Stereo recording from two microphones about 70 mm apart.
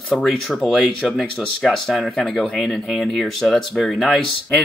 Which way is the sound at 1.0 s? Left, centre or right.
Centre.